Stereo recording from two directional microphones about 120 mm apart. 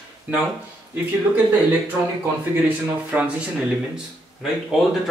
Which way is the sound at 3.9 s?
5° right (ahead or behind).